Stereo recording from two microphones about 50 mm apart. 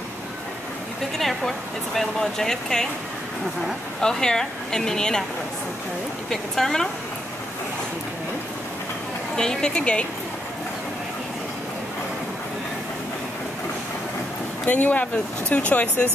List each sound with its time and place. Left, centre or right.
1.1 s speech: centre
4.0 s speech: centre
6.3 s speech: centre
9.4 s speech: centre
14.7 s speech: left